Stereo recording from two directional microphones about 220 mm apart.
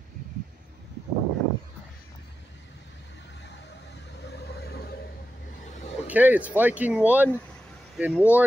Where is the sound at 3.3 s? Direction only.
50° left (ahead or behind).